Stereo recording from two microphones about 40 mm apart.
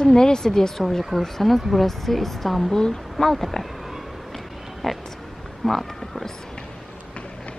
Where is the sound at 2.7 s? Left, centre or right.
Centre.